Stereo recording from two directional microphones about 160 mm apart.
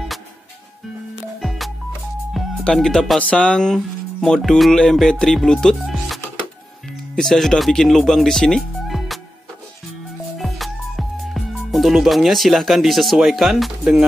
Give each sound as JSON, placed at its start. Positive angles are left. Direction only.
{"t": 2.3, "sound": "speech", "side_deg": 0}
{"t": 7.2, "sound": "speech", "side_deg": 0}
{"t": 10.3, "sound": "music", "side_deg": 0}